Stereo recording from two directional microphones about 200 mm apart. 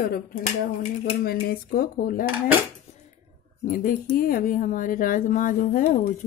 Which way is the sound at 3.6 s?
40° left (ahead or behind).